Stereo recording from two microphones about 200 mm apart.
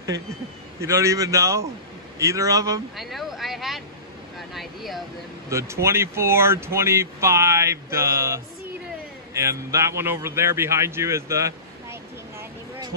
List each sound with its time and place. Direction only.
0.7 s speech: 15° right (ahead or behind)
3.0 s speech: centre (ahead or behind)
5.5 s a man's voice: 15° right (ahead or behind)